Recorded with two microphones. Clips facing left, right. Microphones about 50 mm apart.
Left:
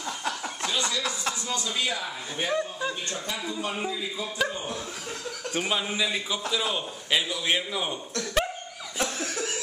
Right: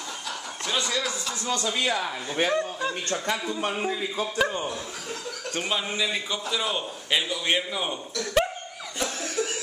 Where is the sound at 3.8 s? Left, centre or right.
Right.